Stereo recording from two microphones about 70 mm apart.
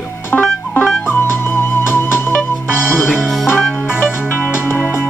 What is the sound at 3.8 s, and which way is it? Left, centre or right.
Music, left.